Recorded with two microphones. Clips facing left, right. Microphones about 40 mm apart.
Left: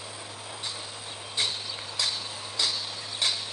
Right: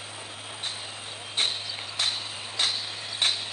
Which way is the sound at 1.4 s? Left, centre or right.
Right.